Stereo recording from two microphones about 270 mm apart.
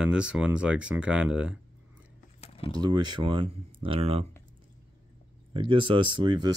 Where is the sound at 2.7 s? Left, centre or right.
Centre.